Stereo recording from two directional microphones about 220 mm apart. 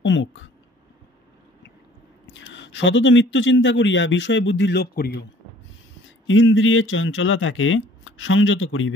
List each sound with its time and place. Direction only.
0.0 s speech: 55° left (ahead or behind)
2.2 s speech: 55° left (ahead or behind)
6.2 s speech: 60° left (ahead or behind)